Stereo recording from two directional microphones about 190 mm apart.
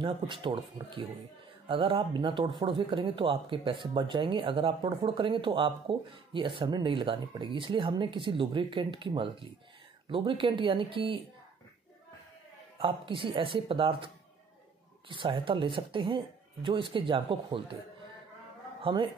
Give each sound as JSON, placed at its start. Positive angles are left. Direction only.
{"t": 0.0, "sound": "speech", "side_deg": -25}
{"t": 12.7, "sound": "speech", "side_deg": -30}
{"t": 18.8, "sound": "speech", "side_deg": -25}